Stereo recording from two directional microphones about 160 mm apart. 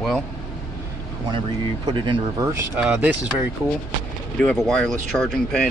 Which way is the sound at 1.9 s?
30° right (ahead or behind).